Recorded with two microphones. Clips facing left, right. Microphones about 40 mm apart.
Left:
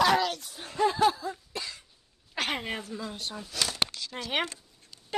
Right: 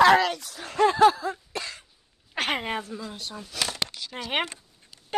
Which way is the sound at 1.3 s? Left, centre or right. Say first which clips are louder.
Right 4 dB; right.